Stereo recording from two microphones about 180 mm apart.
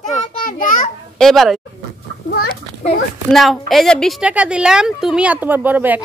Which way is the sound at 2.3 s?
60° left (ahead or behind).